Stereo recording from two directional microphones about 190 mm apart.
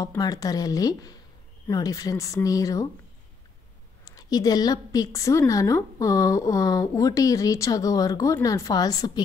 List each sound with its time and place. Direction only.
0.0 s speech: 20° left (ahead or behind)
4.0 s a woman's voice: 20° left (ahead or behind)